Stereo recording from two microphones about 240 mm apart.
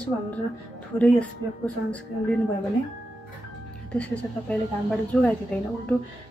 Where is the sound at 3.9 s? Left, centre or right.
Centre.